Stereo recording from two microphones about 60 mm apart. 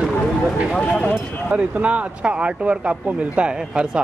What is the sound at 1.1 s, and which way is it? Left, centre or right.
Speech, right.